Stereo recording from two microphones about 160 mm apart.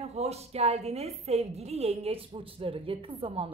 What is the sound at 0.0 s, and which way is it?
A woman's voice, 40° right (ahead or behind).